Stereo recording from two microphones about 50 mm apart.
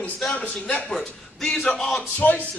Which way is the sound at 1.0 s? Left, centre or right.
Centre.